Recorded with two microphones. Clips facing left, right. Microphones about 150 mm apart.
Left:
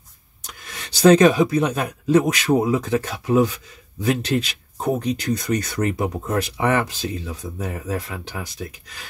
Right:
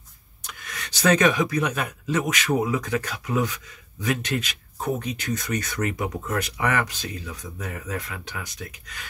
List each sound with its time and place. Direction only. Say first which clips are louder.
0.4 s speech: even; 30° left (ahead or behind)